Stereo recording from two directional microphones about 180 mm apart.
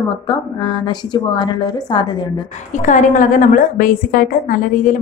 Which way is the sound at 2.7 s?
45° left (ahead or behind).